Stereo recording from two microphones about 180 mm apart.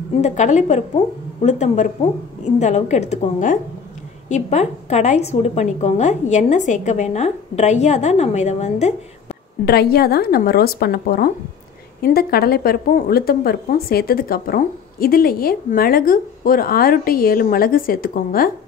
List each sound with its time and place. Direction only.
0.2 s a woman's voice: 40° left (ahead or behind)
9.7 s a woman's voice: 60° left (ahead or behind)